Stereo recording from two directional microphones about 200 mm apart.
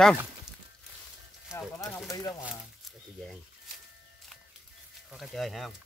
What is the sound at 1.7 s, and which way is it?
Speech, 10° left (ahead or behind).